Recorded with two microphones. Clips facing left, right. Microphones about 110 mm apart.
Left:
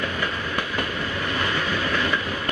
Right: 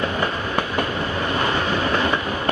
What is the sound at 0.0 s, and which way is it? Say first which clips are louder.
Train: right 4 dB; 30° right (ahead or behind).